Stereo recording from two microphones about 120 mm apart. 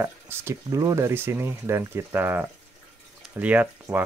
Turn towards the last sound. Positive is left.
turn(degrees=-15)  # may be behind; listen again after turning